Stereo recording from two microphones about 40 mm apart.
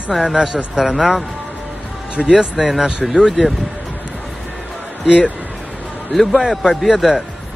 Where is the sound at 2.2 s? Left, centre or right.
Centre.